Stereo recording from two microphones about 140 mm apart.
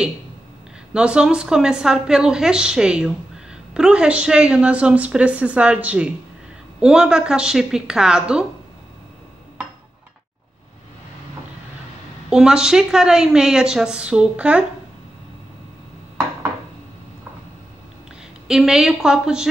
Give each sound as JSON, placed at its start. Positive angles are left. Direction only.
{"t": 0.9, "sound": "a woman's voice", "side_deg": -5}
{"t": 12.3, "sound": "a woman's voice", "side_deg": -5}
{"t": 18.5, "sound": "a woman's voice", "side_deg": -5}